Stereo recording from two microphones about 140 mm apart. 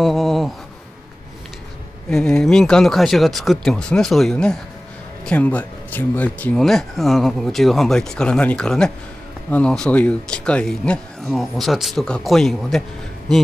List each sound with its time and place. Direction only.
0.0 s speech: centre (ahead or behind)
2.0 s speech: 5° left (ahead or behind)